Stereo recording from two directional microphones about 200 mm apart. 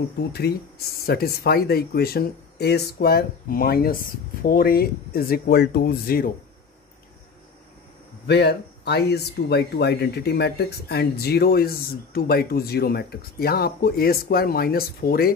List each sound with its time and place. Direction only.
0.3 s speech: 55° left (ahead or behind)
8.3 s speech: 55° left (ahead or behind)